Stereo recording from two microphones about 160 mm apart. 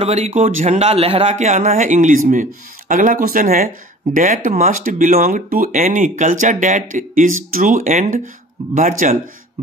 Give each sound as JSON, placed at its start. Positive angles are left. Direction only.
{"t": 0.0, "sound": "a man's voice", "side_deg": -45}